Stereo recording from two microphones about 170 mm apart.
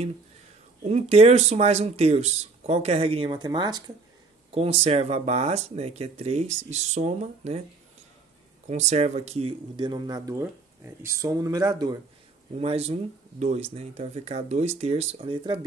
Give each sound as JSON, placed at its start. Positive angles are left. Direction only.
{"t": 0.8, "sound": "speech", "side_deg": -40}
{"t": 4.6, "sound": "speech", "side_deg": -35}
{"t": 8.6, "sound": "speech", "side_deg": -40}
{"t": 12.5, "sound": "speech", "side_deg": -35}